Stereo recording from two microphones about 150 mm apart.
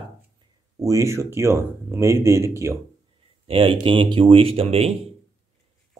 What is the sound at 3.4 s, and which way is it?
Speech, 35° right (ahead or behind).